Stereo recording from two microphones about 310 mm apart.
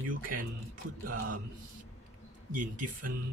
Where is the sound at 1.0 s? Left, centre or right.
Right.